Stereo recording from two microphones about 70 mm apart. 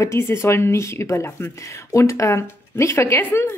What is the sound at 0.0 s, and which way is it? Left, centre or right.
Speech, left.